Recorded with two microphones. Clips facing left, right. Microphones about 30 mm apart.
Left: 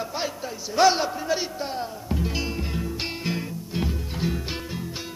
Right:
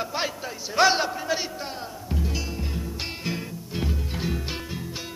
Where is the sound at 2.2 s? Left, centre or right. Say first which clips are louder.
Left 3 dB; left.